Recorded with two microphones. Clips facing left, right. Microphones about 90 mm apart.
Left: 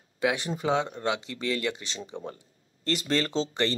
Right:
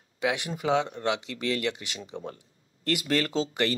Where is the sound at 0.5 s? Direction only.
20° left (ahead or behind).